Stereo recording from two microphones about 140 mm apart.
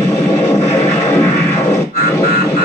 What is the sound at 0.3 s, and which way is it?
Music, 15° left (ahead or behind).